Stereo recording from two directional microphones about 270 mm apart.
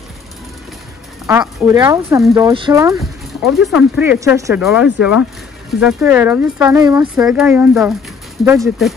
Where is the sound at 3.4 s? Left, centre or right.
Centre.